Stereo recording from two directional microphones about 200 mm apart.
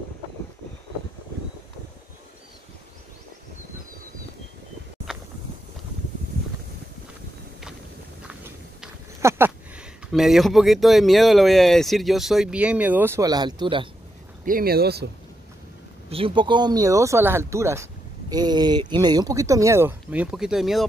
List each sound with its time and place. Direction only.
8.3 s a sound: 10° right (ahead or behind)
10.1 s speech: centre (ahead or behind); by 13.8 s 25° right (ahead or behind)
14.4 s speech: 45° right (ahead or behind)
16.1 s speech: 25° right (ahead or behind); by 20.8 s centre (ahead or behind)